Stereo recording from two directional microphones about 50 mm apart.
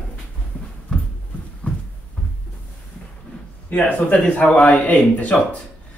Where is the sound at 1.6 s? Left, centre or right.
Left.